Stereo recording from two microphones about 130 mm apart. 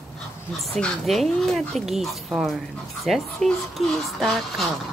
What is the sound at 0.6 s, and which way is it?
Speech, centre (ahead or behind).